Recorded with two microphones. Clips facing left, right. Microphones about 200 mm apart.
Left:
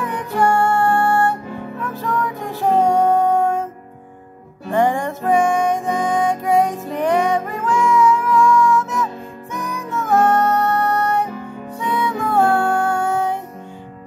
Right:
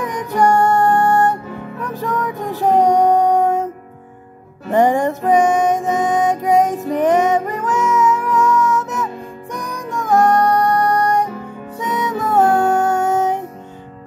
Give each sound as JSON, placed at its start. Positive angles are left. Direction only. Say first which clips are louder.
{"t": 0.0, "sound": "music", "louder": "right 2 dB", "side_deg": -15}
{"t": 4.6, "sound": "music", "louder": "right 4 dB", "side_deg": -15}
{"t": 12.3, "sound": "music", "louder": "right 3 dB", "side_deg": -20}